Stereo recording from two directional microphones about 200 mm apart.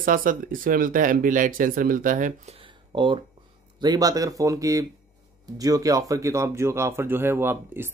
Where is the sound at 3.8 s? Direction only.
20° right (ahead or behind).